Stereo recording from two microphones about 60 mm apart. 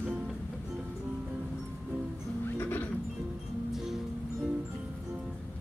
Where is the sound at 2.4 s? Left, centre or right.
Left.